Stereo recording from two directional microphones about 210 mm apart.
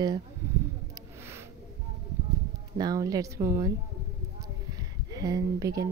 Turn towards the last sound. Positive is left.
turn(degrees=-15)  # may be behind; listen again after turning